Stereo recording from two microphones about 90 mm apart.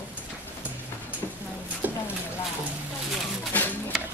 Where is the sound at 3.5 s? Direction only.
20° left (ahead or behind).